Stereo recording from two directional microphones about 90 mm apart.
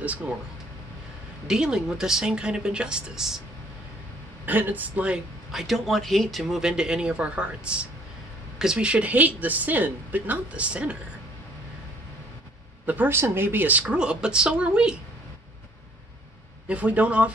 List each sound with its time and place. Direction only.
1.5 s a woman's voice: 5° right (ahead or behind)
4.5 s speech: 20° right (ahead or behind)
5.5 s a woman's voice: centre (ahead or behind)
12.8 s a woman's voice: 20° right (ahead or behind)
16.6 s a woman's voice: 15° right (ahead or behind)